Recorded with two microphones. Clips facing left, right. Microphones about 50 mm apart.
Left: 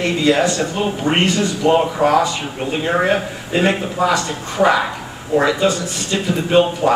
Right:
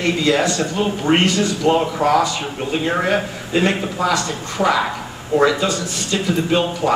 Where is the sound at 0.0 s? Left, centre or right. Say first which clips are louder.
Left 2 dB; left.